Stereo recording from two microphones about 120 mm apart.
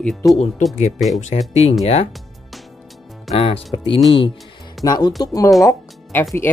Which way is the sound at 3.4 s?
55° left (ahead or behind).